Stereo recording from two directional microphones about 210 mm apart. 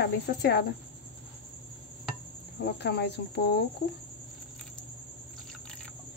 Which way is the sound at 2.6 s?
50° left (ahead or behind).